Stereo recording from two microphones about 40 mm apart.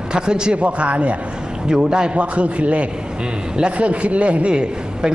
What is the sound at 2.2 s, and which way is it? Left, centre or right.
A man's voice, right.